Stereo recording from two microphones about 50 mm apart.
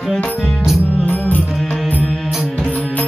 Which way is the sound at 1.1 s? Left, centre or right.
Left.